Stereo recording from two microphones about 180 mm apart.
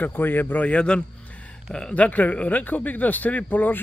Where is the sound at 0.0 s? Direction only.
10° left (ahead or behind).